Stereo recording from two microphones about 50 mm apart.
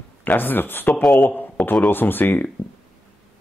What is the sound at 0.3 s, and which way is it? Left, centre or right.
Speech, left.